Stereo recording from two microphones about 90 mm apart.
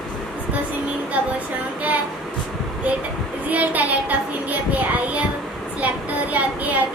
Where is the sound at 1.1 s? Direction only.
15° right (ahead or behind).